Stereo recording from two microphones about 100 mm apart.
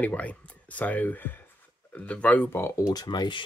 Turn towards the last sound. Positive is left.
turn(degrees=45)  # may be behind; listen again after turning